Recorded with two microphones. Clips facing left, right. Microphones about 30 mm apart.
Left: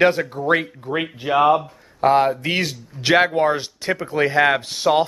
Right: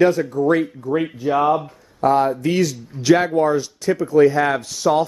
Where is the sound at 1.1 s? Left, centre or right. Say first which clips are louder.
Left 3 dB; left.